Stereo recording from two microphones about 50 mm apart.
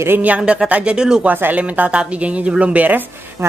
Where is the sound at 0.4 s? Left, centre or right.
Centre.